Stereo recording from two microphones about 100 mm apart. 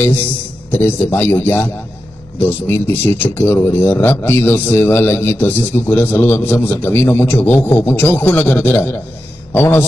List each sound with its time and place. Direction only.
0.7 s speech: 20° left (ahead or behind)